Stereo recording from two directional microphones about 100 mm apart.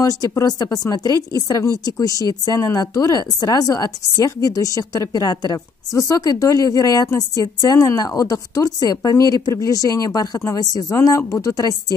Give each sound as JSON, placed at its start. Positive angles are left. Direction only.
{"t": 0.0, "sound": "speech", "side_deg": 40}